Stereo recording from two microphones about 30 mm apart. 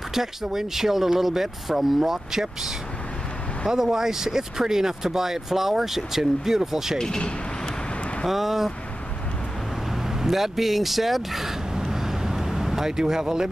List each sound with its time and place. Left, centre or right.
0.1 s speech: centre
3.7 s speech: centre
7.0 s speech: centre
8.3 s speech: centre
10.0 s speech: centre
11.8 s vehicle: centre
12.9 s speech: centre